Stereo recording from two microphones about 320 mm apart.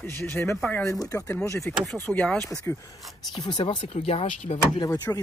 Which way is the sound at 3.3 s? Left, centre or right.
Centre.